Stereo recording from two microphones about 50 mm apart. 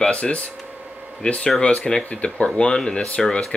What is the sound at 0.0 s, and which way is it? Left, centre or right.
Speech, left.